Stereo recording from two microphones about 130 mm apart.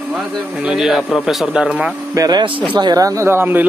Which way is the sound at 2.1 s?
35° right (ahead or behind).